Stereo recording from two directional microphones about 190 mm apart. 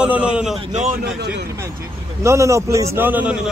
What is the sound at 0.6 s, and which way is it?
Speech, 35° right (ahead or behind).